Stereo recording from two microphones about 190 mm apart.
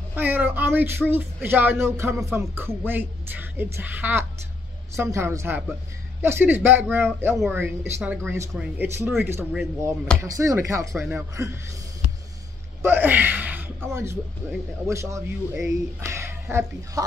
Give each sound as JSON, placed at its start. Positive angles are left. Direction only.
{"t": 0.1, "sound": "speech", "side_deg": -10}
{"t": 10.2, "sound": "speech", "side_deg": -15}
{"t": 12.8, "sound": "speech", "side_deg": -10}